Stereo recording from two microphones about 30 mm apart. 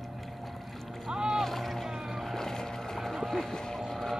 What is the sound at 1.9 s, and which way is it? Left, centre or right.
Boat, centre.